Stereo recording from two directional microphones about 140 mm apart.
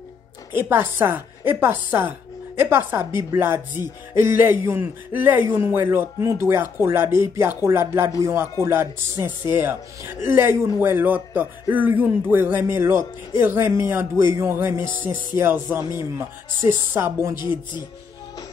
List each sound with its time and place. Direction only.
0.5 s a man's voice: 15° right (ahead or behind)
17.4 s chopping: 30° left (ahead or behind)